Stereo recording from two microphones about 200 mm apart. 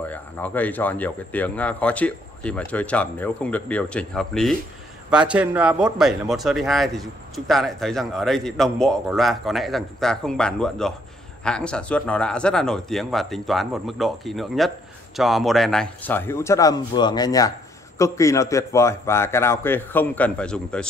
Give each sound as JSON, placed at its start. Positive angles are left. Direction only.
{"t": 0.1, "sound": "a man's voice", "side_deg": 10}